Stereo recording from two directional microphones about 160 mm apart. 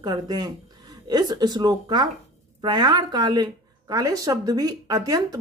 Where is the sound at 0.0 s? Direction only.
25° right (ahead or behind).